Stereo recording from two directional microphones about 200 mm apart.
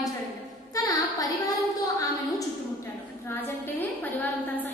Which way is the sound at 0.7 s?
20° left (ahead or behind).